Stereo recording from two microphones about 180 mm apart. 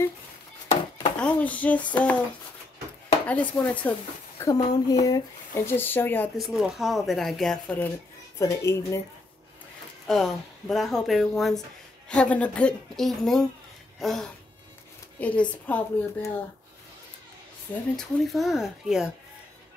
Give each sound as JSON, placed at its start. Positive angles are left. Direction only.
{"t": 0.9, "sound": "speech", "side_deg": 10}
{"t": 1.8, "sound": "speech", "side_deg": 25}
{"t": 3.3, "sound": "speech", "side_deg": 10}
{"t": 4.4, "sound": "speech", "side_deg": 20}
{"t": 6.3, "sound": "speech", "side_deg": 0}
{"t": 8.4, "sound": "speech", "side_deg": 15}
{"t": 10.0, "sound": "speech", "side_deg": 0}
{"t": 13.9, "sound": "a sound", "side_deg": 0}
{"t": 15.1, "sound": "a woman's voice", "side_deg": 10}
{"t": 17.9, "sound": "speech", "side_deg": 0}